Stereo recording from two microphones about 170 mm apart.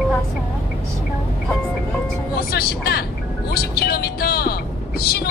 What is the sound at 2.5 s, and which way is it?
A woman's voice, 70° left (ahead or behind).